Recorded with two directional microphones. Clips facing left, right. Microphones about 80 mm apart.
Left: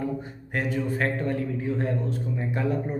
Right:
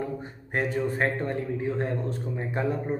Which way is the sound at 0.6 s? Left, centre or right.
Right.